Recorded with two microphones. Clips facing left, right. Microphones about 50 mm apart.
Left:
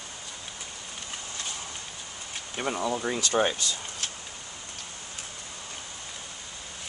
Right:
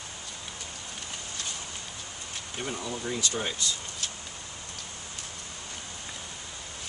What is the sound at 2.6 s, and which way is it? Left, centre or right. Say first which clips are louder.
Speech: left 6 dB; left.